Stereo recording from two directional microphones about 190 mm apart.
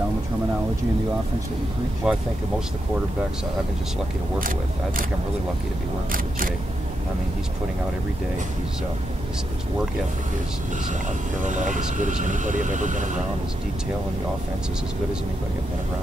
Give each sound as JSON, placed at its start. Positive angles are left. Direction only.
{"t": 2.0, "sound": "speech", "side_deg": -5}
{"t": 4.4, "sound": "speech", "side_deg": -50}
{"t": 11.4, "sound": "speech", "side_deg": -40}